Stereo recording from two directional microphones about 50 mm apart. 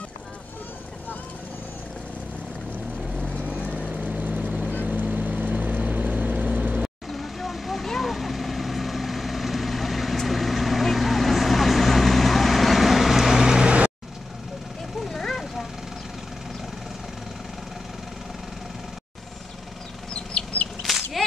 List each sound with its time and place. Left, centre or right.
3.9 s vehicle: right
7.1 s vehicle: centre
15.0 s vehicle: centre
20.8 s chicken: centre